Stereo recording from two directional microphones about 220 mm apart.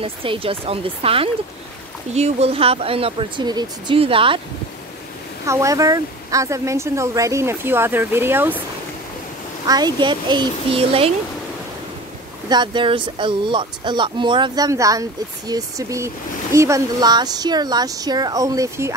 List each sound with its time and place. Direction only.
0.0 s speech: 25° right (ahead or behind)
5.5 s speech: 15° right (ahead or behind)
9.7 s speech: 20° right (ahead or behind)
12.4 s speech: 20° right (ahead or behind)